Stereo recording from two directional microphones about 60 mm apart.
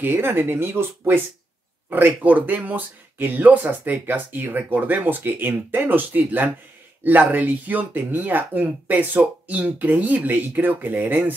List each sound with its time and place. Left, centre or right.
0.0 s speech: right